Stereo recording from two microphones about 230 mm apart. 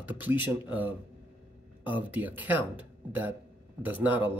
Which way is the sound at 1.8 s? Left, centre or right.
Centre.